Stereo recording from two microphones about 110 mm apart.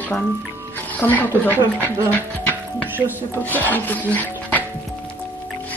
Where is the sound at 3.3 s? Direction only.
15° left (ahead or behind).